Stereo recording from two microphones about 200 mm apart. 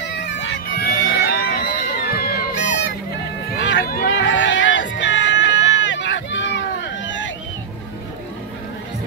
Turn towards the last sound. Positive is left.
turn(degrees=65)  # may be behind; listen again after turning